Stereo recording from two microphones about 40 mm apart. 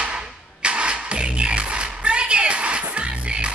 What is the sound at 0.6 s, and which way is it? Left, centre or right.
Music, right.